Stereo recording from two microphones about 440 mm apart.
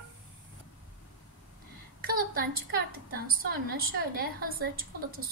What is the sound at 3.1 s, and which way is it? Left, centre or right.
A woman's voice, right.